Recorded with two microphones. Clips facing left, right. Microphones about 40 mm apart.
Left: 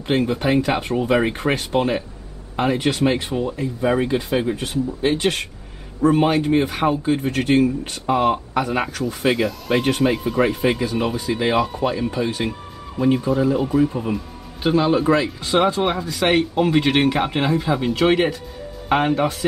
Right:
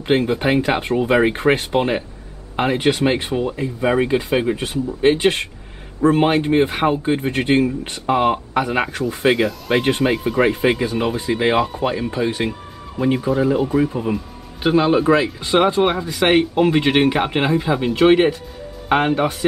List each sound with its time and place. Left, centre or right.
0.1 s speech: right
9.3 s speech: centre